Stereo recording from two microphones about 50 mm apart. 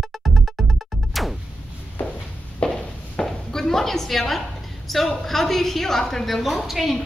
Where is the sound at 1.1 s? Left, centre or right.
Centre.